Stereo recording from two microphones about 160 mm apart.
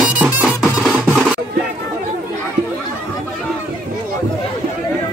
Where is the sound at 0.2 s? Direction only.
5° right (ahead or behind).